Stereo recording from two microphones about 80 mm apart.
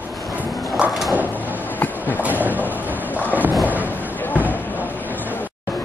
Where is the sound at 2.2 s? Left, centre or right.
Right.